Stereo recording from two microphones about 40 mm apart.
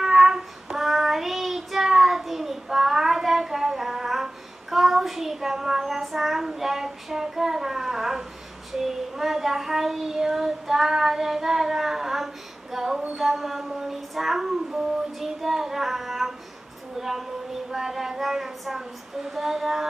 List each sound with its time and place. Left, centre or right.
0.0 s child singing: centre
12.7 s female singing: centre
13.1 s child singing: centre
17.0 s a sound: centre